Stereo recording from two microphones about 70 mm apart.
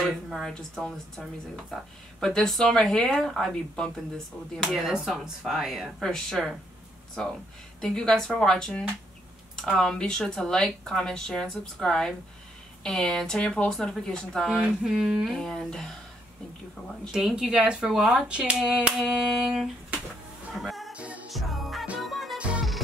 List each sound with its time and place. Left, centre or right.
0.3 s speech: centre
4.6 s speech: centre
6.0 s speech: centre
7.8 s speech: centre
17.1 s speech: centre
20.5 s music: centre
20.9 s music: centre
21.3 s music: centre